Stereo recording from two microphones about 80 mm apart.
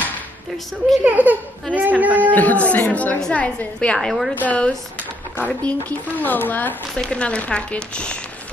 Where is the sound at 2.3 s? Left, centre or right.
Centre.